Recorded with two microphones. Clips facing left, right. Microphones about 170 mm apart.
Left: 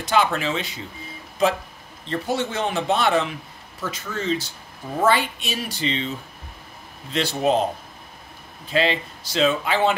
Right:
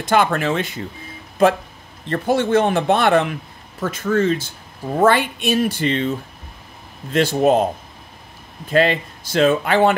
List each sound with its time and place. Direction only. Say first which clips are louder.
0.0 s speech: right 4 dB; 55° right (ahead or behind)
2.0 s speech: right 6 dB; 55° right (ahead or behind)
8.6 s speech: right 5 dB; 50° right (ahead or behind)